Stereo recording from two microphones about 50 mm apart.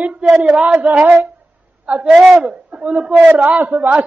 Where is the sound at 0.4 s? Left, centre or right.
Right.